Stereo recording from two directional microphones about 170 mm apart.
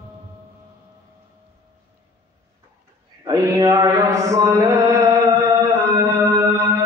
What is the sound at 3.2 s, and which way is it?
Mantra, 20° right (ahead or behind).